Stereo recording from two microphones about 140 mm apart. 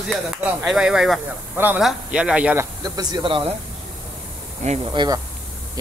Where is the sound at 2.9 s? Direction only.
30° right (ahead or behind).